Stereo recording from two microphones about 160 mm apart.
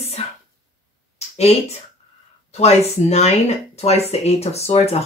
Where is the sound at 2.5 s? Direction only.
40° left (ahead or behind).